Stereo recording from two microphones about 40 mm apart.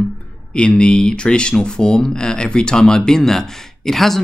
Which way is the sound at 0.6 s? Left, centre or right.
Left.